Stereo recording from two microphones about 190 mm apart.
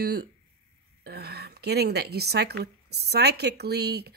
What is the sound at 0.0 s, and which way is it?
A woman's voice, 55° right (ahead or behind).